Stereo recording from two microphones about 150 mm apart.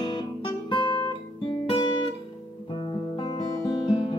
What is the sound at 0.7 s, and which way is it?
Guitar, 35° left (ahead or behind).